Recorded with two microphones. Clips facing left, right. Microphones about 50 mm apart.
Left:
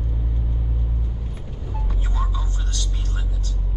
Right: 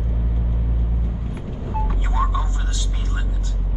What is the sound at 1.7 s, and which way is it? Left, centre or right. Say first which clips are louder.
Vehicle: right 7 dB; right.